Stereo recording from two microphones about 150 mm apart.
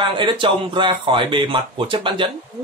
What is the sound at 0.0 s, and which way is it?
Speech, 35° right (ahead or behind).